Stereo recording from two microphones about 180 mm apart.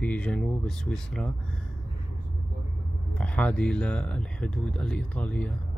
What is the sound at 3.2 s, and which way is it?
Speech, 5° left (ahead or behind).